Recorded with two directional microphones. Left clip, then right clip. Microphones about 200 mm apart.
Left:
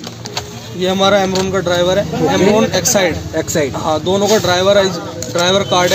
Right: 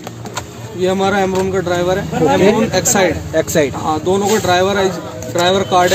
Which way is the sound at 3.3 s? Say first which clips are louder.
Right 2 dB; 10° right (ahead or behind).